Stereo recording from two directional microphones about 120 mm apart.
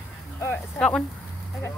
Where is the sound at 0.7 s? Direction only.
5° left (ahead or behind).